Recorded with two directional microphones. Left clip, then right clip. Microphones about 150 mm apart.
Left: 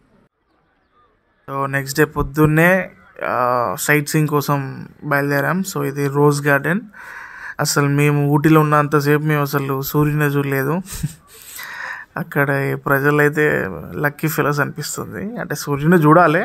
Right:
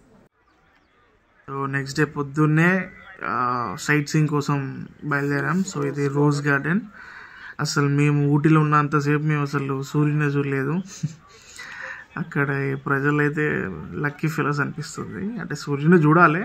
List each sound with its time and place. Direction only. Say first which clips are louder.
1.4 s speech: left 6 dB; 30° left (ahead or behind)